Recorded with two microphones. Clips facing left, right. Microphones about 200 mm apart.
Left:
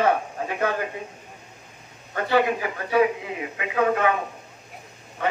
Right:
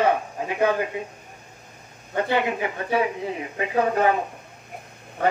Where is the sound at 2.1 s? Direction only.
20° right (ahead or behind).